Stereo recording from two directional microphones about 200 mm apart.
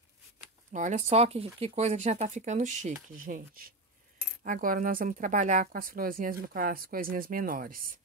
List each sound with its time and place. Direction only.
0.7 s speech: 35° right (ahead or behind)